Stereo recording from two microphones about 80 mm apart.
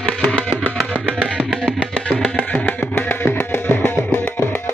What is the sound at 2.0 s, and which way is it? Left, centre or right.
Music, centre.